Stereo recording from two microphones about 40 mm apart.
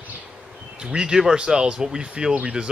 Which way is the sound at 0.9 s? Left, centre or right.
Centre.